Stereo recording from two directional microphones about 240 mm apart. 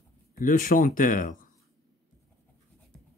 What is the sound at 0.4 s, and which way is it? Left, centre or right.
Speech, left.